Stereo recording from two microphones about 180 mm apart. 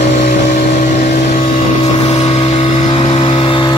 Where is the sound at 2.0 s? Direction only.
35° left (ahead or behind).